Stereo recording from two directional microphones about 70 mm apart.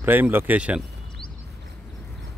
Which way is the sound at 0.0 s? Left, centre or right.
Right.